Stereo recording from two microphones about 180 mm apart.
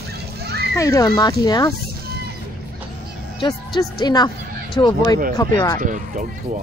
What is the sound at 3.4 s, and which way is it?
Speech, 25° left (ahead or behind).